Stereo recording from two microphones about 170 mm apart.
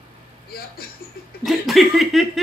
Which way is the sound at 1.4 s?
Centre (ahead or behind).